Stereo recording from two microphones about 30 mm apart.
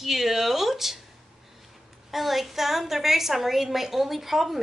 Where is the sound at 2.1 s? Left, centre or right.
Centre.